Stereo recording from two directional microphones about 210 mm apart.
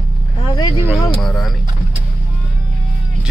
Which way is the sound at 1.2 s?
Centre (ahead or behind).